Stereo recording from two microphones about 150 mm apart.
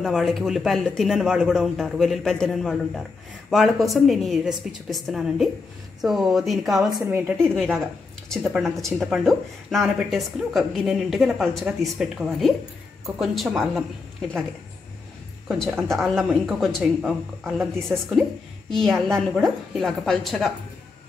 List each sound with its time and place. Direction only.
0.0 s a woman's voice: centre (ahead or behind)
7.1 s speech: 15° right (ahead or behind)
7.4 s a woman's voice: centre (ahead or behind)
15.4 s a woman's voice: 5° left (ahead or behind)